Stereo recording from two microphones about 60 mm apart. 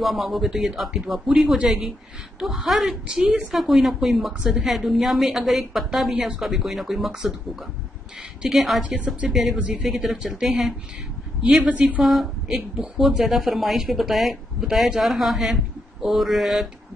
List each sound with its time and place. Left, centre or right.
0.0 s a woman's voice: centre
2.7 s a woman's voice: centre
8.4 s a woman's voice: centre
8.8 s a woman's voice: right
9.3 s a woman's voice: centre
9.6 s a woman's voice: centre
9.8 s speech: centre
11.4 s a woman's voice: right
12.0 s a woman's voice: centre